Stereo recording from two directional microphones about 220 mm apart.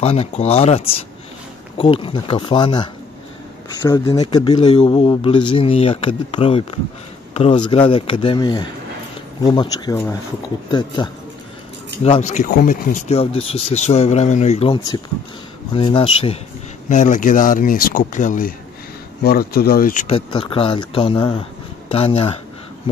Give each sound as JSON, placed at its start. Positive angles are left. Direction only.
{"t": 0.0, "sound": "speech", "side_deg": 30}
{"t": 12.0, "sound": "speech", "side_deg": 30}
{"t": 20.2, "sound": "speech", "side_deg": 25}